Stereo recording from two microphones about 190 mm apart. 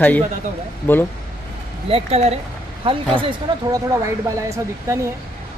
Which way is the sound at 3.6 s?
15° right (ahead or behind).